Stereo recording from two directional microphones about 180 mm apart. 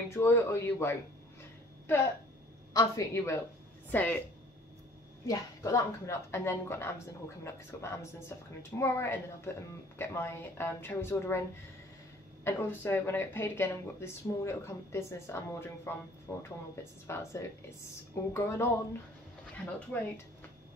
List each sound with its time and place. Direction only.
0.1 s speech: 15° left (ahead or behind)
2.7 s speech: 20° left (ahead or behind)
5.2 s speech: 20° left (ahead or behind)
12.4 s speech: 10° left (ahead or behind)